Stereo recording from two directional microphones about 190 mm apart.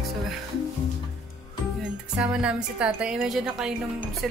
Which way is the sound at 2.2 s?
5° right (ahead or behind).